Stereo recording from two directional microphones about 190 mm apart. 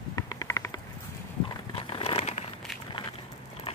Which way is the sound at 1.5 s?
25° left (ahead or behind).